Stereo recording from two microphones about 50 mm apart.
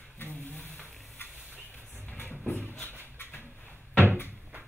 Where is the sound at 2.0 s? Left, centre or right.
Left.